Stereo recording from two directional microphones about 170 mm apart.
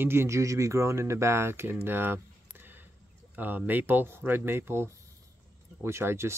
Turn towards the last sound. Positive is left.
turn(degrees=-15)  # may be behind; listen again after turning